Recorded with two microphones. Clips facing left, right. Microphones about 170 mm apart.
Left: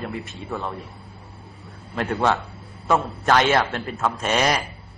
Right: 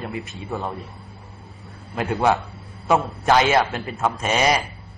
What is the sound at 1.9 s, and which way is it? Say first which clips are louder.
A man's voice: right 2 dB; 10° right (ahead or behind).